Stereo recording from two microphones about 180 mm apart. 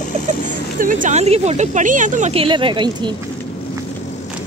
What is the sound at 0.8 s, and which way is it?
Speech, 50° right (ahead or behind).